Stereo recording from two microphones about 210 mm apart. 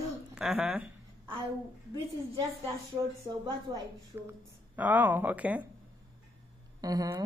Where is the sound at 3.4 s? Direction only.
15° right (ahead or behind).